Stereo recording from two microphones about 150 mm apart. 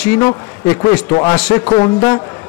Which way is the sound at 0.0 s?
10° left (ahead or behind).